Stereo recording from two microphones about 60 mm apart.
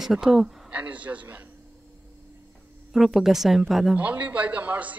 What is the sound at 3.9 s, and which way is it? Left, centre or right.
A man's voice, right.